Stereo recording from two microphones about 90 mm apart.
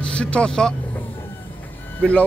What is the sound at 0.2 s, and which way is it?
Speech, 10° left (ahead or behind).